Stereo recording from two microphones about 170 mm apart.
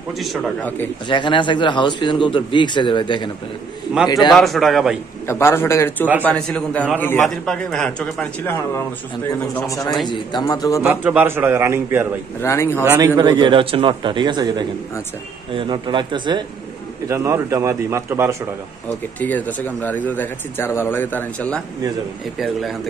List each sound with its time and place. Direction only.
1.0 s speech: 30° left (ahead or behind)
4.3 s a man's voice: centre (ahead or behind)
5.2 s speech: 15° left (ahead or behind)
10.0 s speech: 25° left (ahead or behind)
10.8 s a man's voice: 5° right (ahead or behind)
12.4 s speech: 15° left (ahead or behind)
13.0 s a man's voice: 25° right (ahead or behind)
17.1 s a man's voice: 15° right (ahead or behind)
19.1 s a man's voice: 10° left (ahead or behind)